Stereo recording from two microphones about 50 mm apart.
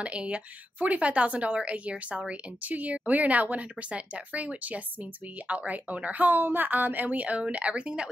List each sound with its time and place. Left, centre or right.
0.0 s a woman's voice: right